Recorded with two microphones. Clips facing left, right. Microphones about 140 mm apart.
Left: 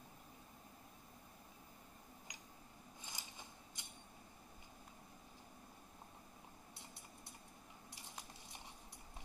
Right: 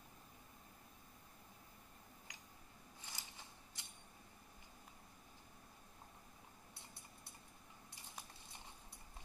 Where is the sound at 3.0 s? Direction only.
20° left (ahead or behind).